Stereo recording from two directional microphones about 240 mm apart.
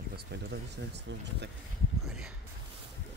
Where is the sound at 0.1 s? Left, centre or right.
Right.